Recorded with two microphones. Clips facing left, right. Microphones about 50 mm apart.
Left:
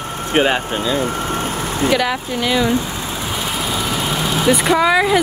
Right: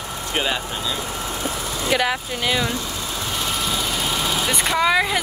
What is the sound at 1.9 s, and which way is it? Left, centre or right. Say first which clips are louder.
Speech: left 3 dB; centre.